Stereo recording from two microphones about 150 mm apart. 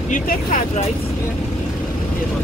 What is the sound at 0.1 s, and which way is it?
Speech, 60° left (ahead or behind).